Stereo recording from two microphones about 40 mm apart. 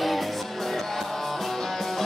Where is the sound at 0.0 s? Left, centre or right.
Centre.